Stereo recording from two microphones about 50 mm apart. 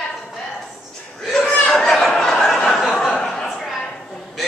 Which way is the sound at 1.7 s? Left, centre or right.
Centre.